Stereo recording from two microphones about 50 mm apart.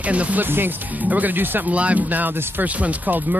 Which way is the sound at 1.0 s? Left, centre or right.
Right.